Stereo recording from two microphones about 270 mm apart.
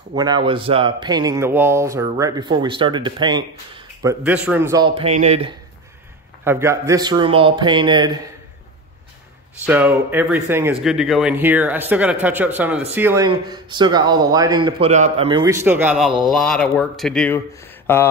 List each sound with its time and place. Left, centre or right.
0.1 s speech: centre
6.4 s speech: centre
9.7 s speech: centre